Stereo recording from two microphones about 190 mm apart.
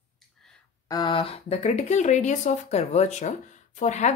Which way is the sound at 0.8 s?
20° left (ahead or behind).